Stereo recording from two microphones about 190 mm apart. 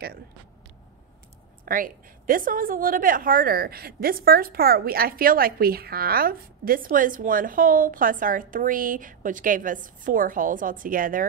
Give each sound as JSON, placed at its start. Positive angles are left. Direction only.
{"t": 1.7, "sound": "a woman's voice", "side_deg": -45}